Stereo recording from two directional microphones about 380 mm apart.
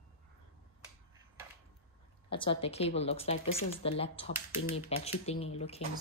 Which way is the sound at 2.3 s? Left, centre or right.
Centre.